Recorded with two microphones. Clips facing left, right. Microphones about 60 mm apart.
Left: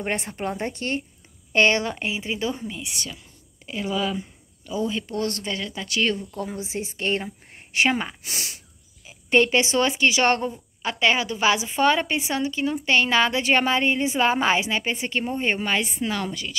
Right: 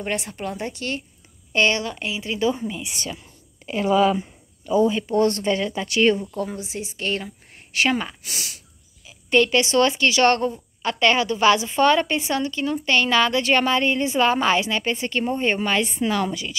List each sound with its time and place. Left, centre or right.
0.0 s a woman's voice: left
2.3 s a woman's voice: centre
2.8 s speech: right
3.9 s speech: right
4.8 s speech: right
6.5 s a woman's voice: left
7.2 s a sound: left
7.9 s speech: centre
8.3 s a woman's voice: left; by 16.5 s centre